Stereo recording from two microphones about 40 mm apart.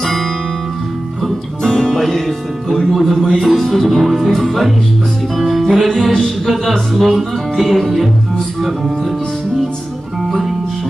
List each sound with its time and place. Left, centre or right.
1.6 s music: centre
2.0 s speech: centre
5.4 s music: centre
6.1 s a capella: centre
6.5 s speech: centre